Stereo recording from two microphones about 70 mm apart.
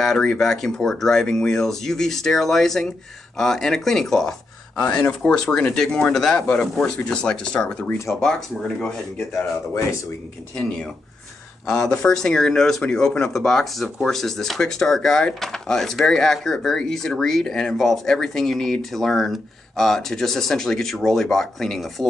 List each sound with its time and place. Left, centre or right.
0.0 s speech: centre
4.8 s speech: centre
8.1 s speech: centre
9.3 s speech: left
11.6 s speech: centre